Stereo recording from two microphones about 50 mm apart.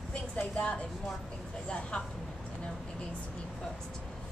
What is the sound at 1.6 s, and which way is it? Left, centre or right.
Speech, left.